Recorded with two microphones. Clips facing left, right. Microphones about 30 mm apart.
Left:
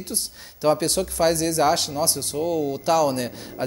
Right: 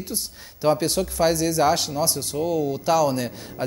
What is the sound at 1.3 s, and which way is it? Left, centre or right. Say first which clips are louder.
Speech: even; left.